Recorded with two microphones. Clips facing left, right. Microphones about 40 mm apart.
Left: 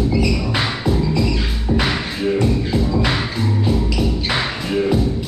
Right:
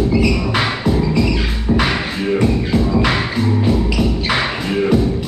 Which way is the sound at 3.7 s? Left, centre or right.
Centre.